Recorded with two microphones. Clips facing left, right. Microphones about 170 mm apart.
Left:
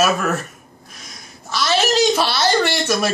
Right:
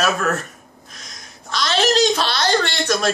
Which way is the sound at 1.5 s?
5° left (ahead or behind).